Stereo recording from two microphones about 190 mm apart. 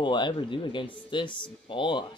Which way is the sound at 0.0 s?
25° left (ahead or behind).